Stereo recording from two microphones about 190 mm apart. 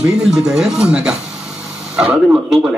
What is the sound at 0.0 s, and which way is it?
Speech, 5° right (ahead or behind).